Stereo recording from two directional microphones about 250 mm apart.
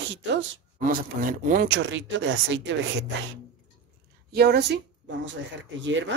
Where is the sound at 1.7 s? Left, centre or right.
Right.